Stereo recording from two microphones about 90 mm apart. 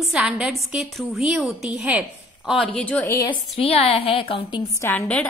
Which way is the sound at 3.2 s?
90° left.